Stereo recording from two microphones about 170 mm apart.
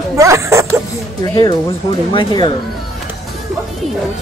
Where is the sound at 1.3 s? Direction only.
20° left (ahead or behind).